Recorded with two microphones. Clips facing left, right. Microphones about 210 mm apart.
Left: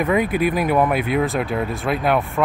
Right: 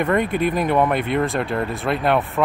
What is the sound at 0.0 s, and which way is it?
Speech, 5° left (ahead or behind).